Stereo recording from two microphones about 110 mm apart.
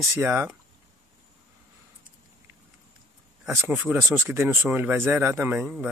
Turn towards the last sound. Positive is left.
turn(degrees=-15)  # may be behind; listen again after turning